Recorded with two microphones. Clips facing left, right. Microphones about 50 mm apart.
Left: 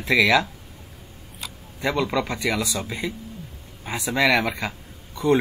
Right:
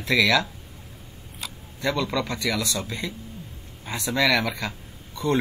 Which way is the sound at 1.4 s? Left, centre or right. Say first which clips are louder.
Even; centre.